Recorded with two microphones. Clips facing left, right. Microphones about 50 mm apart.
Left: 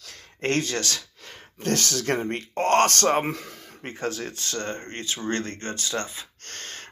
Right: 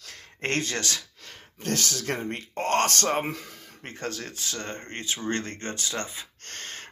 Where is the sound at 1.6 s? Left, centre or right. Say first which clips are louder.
Left 3 dB; left.